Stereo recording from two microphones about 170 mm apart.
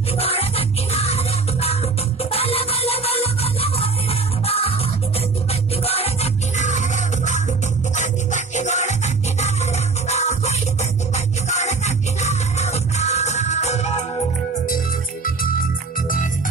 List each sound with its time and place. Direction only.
0.2 s music: 35° left (ahead or behind)